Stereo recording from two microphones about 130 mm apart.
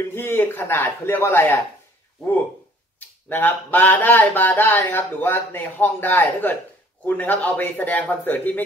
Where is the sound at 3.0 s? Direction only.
15° left (ahead or behind).